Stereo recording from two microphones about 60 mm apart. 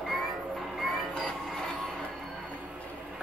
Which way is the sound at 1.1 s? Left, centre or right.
Centre.